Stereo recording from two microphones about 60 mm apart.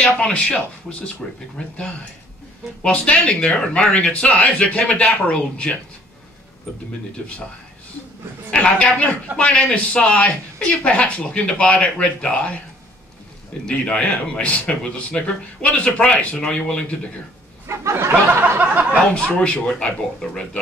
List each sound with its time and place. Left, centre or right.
0.2 s a man's voice: centre
2.8 s a man's voice: centre
8.5 s a man's voice: centre
13.7 s a man's voice: centre
17.6 s speech: right
18.6 s speech: right
19.1 s speech: centre